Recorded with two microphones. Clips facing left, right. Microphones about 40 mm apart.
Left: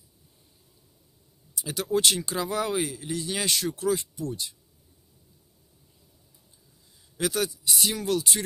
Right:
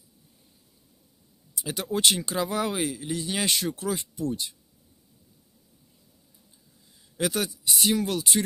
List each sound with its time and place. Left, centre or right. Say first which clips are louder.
1.5 s speech: left 3 dB; right
7.2 s speech: even; centre